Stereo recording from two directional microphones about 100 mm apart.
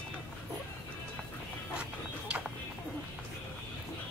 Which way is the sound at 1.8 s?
10° right (ahead or behind).